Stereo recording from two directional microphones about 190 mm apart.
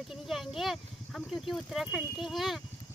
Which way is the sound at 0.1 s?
Centre (ahead or behind).